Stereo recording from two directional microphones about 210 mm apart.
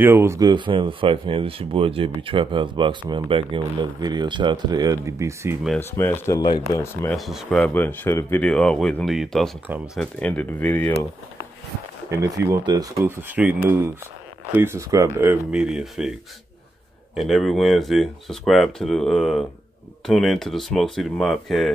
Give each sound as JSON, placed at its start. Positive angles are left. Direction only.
{"t": 0.0, "sound": "speech", "side_deg": -10}
{"t": 5.8, "sound": "speech", "side_deg": 10}
{"t": 7.2, "sound": "speech", "side_deg": 0}
{"t": 12.1, "sound": "speech", "side_deg": -15}
{"t": 17.1, "sound": "speech", "side_deg": 0}